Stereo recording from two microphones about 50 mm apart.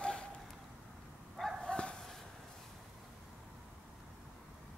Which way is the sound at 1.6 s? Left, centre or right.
Centre.